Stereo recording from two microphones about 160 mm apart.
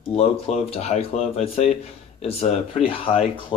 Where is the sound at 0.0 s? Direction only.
40° left (ahead or behind).